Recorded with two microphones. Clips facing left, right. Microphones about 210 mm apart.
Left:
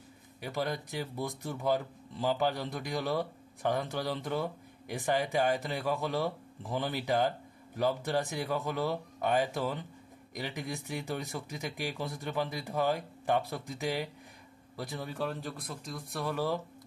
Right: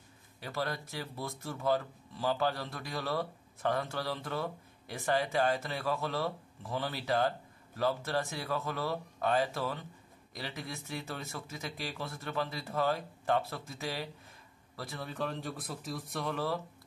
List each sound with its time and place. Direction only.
0.4 s speech: 15° left (ahead or behind)